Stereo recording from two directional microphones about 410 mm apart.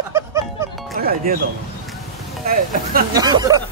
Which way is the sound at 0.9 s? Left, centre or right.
Right.